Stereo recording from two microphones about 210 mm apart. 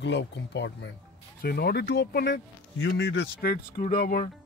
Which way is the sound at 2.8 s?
60° left (ahead or behind).